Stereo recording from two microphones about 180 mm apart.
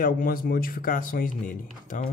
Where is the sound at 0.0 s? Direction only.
50° left (ahead or behind).